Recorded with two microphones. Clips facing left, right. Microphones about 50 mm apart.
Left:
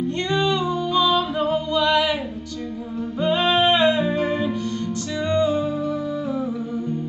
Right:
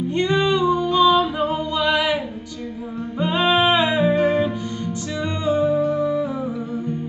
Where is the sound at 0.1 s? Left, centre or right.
Centre.